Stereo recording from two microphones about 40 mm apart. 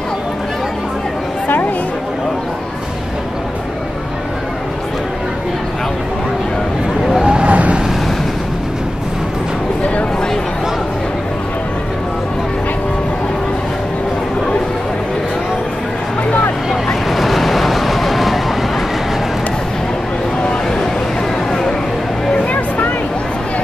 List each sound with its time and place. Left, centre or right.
7.2 s vehicle: right
17.1 s vehicle: centre